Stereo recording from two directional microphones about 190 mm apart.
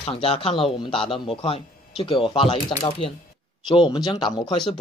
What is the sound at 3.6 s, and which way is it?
Speech, 25° left (ahead or behind).